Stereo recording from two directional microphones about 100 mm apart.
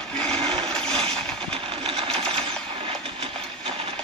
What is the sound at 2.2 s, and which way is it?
Sewing machine, 90° right.